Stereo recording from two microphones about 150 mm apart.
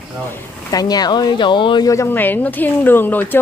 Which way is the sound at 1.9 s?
15° left (ahead or behind).